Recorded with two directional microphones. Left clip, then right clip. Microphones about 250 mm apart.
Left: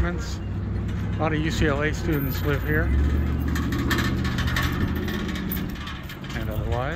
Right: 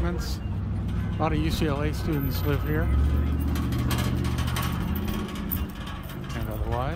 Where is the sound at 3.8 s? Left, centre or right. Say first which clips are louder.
Left 7 dB; right.